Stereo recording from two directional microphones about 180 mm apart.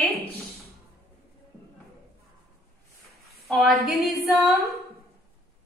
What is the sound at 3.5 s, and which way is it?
A woman's voice, centre (ahead or behind).